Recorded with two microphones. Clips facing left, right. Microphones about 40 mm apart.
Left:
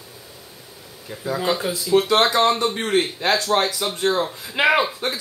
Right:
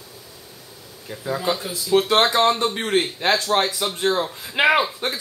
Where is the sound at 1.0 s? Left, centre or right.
Centre.